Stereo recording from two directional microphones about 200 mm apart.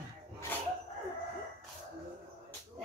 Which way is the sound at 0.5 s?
10° left (ahead or behind).